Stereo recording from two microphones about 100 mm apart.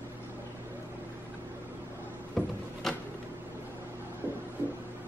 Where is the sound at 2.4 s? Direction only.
5° left (ahead or behind).